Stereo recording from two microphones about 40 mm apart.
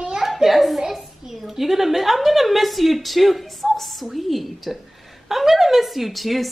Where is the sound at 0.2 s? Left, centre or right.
Centre.